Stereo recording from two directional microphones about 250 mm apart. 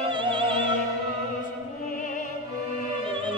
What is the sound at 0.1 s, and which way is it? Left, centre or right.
Opera, centre.